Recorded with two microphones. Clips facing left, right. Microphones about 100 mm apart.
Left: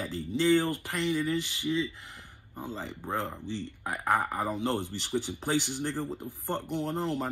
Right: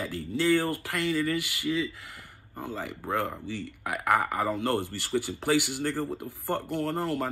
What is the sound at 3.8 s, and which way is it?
Speech, 65° right (ahead or behind).